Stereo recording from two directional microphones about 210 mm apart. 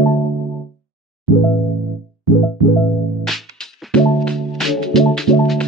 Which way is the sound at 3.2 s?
Centre (ahead or behind).